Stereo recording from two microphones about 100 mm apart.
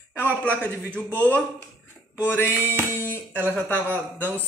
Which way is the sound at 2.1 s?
20° left (ahead or behind).